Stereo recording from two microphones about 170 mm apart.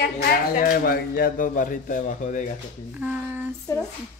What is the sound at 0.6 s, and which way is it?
Speech, 60° left (ahead or behind).